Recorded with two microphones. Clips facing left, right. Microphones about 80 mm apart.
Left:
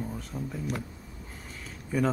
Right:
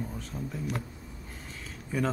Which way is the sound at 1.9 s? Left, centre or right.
Centre.